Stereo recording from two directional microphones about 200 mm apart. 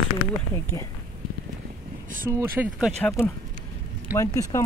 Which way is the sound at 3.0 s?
10° left (ahead or behind).